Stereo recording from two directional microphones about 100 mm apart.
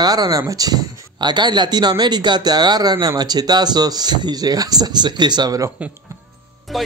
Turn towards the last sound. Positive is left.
turn(degrees=0)  # may be behind; listen again after turning